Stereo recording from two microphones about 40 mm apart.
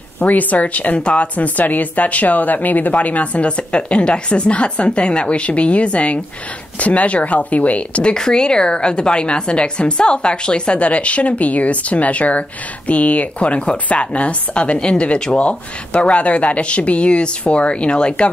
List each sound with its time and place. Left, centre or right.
0.2 s a woman's voice: left